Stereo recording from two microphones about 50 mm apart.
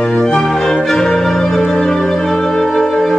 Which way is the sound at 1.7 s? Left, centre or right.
Centre.